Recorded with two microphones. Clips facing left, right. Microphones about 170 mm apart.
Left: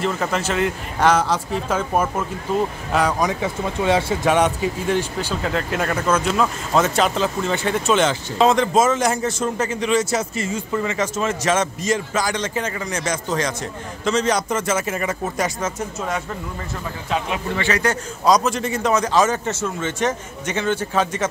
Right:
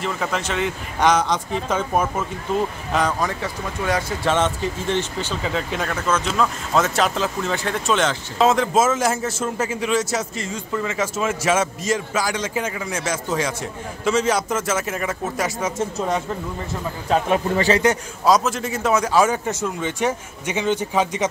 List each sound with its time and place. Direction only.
0.0 s speech: centre (ahead or behind)
17.1 s a man's voice: 40° right (ahead or behind)
18.2 s a man's voice: 5° right (ahead or behind)